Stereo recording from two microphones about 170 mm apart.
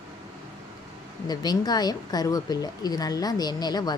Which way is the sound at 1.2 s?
25° left (ahead or behind).